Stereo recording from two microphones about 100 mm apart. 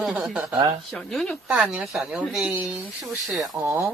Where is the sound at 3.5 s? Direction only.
25° right (ahead or behind).